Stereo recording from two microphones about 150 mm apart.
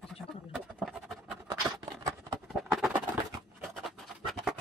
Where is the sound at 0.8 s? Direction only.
Centre (ahead or behind).